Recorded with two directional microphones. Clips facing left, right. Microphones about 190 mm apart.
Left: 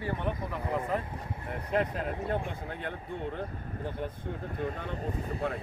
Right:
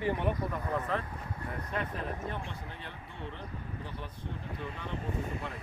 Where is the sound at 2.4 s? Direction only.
50° left (ahead or behind).